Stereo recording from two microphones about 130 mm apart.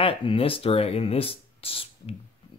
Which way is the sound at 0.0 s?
45° left (ahead or behind).